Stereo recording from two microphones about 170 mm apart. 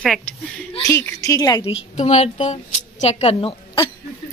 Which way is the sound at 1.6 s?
40° left (ahead or behind).